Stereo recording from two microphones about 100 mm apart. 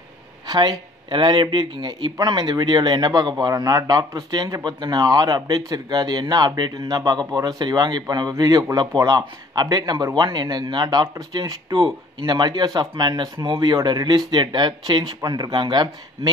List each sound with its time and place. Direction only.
0.5 s speech: 50° right (ahead or behind)